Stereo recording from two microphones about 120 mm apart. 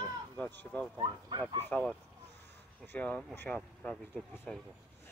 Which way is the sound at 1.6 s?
10° left (ahead or behind).